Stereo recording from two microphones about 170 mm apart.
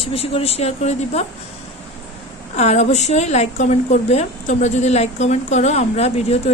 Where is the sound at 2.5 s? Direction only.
40° left (ahead or behind).